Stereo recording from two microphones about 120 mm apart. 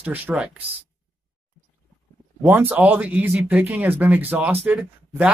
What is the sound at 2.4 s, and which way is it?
Speech, 15° right (ahead or behind).